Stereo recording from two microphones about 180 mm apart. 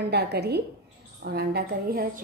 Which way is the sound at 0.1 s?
65° right (ahead or behind).